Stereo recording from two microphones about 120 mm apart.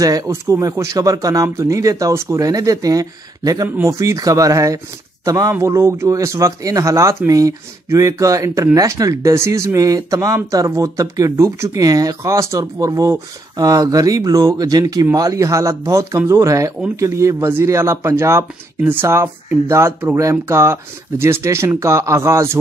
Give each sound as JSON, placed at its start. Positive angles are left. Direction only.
{"t": 0.0, "sound": "speech", "side_deg": -30}